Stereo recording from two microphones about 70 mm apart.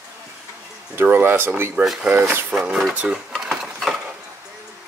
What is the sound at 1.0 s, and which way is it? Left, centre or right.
Speech, right.